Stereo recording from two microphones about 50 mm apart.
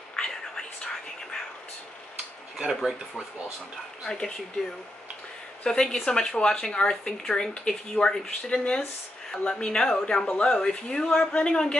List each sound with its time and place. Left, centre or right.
0.1 s whispering: centre
2.7 s speech: centre
5.6 s speech: centre